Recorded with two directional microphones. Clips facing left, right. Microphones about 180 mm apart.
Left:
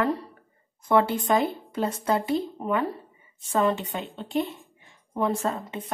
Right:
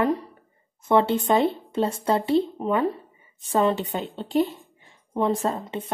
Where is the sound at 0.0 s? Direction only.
15° right (ahead or behind).